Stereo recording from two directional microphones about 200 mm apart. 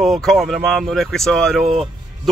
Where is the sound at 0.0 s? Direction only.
Centre (ahead or behind).